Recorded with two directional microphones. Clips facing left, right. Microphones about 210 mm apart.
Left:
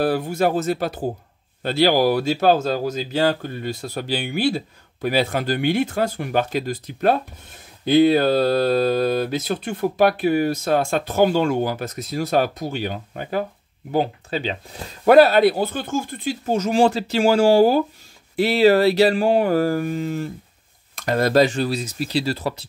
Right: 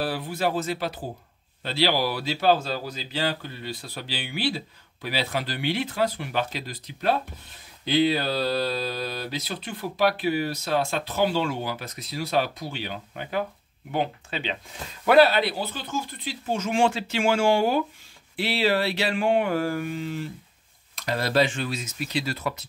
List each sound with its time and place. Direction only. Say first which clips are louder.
0.0 s speech: left 7 dB; 45° left (ahead or behind); by 22.7 s 30° left (ahead or behind)